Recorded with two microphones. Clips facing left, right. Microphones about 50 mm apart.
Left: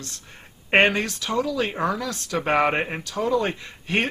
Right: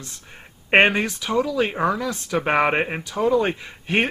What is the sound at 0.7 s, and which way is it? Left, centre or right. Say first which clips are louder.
Speech: right 2 dB; centre.